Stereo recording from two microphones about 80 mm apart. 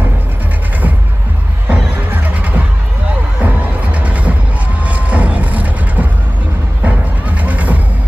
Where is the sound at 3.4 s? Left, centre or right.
Centre.